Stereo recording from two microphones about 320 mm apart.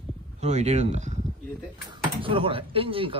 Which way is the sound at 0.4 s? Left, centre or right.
Right.